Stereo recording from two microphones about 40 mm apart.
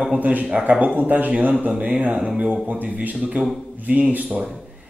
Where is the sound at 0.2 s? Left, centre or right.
Right.